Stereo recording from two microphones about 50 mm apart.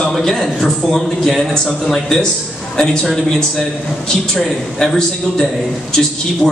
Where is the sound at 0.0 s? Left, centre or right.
Centre.